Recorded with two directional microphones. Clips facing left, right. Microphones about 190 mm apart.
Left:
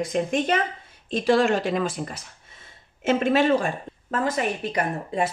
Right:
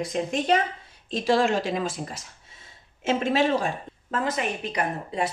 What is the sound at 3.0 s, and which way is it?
Speech, 55° left (ahead or behind).